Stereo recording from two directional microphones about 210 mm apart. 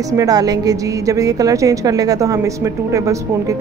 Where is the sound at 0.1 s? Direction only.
15° right (ahead or behind).